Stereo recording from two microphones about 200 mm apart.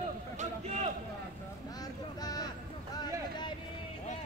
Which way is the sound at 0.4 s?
35° right (ahead or behind).